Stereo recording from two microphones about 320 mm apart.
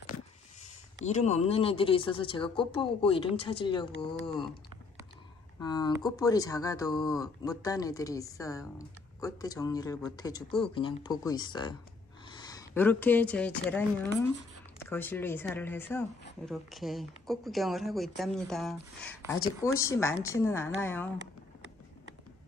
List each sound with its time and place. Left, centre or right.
1.0 s speech: left
5.6 s speech: centre